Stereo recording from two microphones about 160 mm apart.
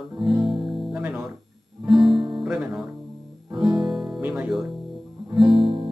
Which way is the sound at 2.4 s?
5° right (ahead or behind).